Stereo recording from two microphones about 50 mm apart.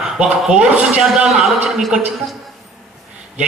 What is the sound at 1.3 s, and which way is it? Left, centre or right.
Speech, centre.